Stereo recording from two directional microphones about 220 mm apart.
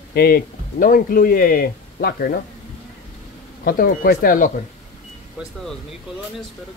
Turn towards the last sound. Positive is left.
turn(degrees=-5)  # may be behind; listen again after turning